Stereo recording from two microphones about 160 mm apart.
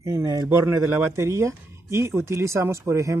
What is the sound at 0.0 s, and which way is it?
Speech, 20° right (ahead or behind).